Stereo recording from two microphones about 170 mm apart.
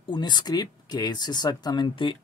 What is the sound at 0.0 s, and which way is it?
Speech, 25° left (ahead or behind).